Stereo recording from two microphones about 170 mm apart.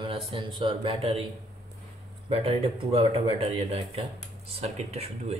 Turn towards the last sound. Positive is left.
turn(degrees=-40)  # may be behind; listen again after turning